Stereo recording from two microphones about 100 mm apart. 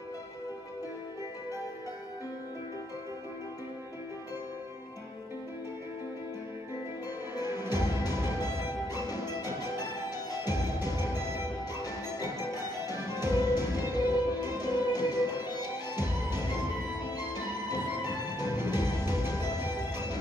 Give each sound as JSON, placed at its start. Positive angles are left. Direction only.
{"t": 7.4, "sound": "music", "side_deg": -25}
{"t": 8.8, "sound": "music", "side_deg": 40}
{"t": 18.5, "sound": "music", "side_deg": -25}
{"t": 18.9, "sound": "music", "side_deg": 40}